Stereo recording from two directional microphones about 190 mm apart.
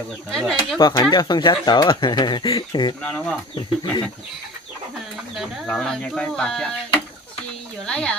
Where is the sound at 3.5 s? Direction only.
25° left (ahead or behind).